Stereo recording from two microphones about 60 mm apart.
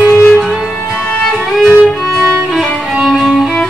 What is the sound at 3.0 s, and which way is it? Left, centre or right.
Music, centre.